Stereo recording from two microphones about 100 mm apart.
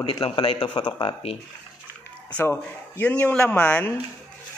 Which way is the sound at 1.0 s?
70° left (ahead or behind).